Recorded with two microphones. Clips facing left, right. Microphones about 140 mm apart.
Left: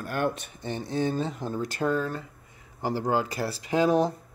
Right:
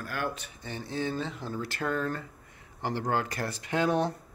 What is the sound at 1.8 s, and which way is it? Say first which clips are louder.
Speech: left 5 dB; 20° left (ahead or behind).